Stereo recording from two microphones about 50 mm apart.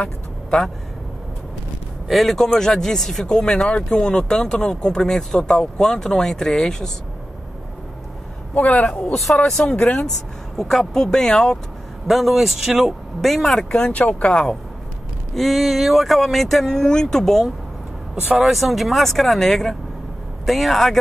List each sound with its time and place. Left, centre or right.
2.0 s speech: centre
8.5 s speech: left
9.1 s speech: centre
9.7 s speech: left
10.6 s speech: centre
12.1 s speech: centre
13.9 s speech: left
14.3 s speech: centre
15.3 s speech: centre
18.3 s speech: centre